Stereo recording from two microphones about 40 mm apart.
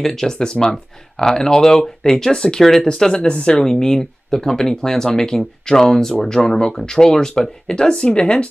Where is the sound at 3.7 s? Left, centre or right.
Centre.